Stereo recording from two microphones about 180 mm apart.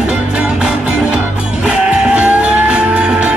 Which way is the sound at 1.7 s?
5° right (ahead or behind).